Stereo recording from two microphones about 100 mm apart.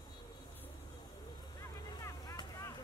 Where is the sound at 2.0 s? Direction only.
35° left (ahead or behind).